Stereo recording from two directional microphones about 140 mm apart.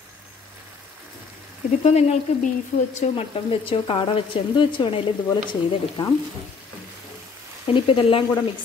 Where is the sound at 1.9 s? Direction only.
50° left (ahead or behind).